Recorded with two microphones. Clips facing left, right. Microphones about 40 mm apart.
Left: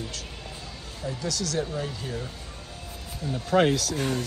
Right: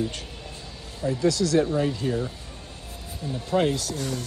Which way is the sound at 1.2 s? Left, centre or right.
Right.